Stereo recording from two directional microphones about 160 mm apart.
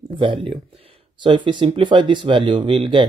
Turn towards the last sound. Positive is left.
turn(degrees=-30)  # may be behind; listen again after turning